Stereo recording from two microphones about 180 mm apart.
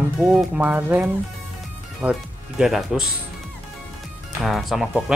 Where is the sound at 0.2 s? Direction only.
Centre (ahead or behind).